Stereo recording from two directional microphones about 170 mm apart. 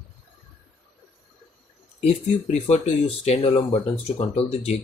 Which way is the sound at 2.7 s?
35° left (ahead or behind).